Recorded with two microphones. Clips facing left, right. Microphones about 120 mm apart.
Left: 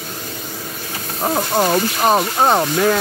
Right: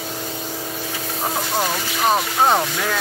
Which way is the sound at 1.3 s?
45° left (ahead or behind).